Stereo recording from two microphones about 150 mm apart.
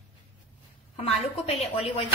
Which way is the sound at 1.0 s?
45° left (ahead or behind).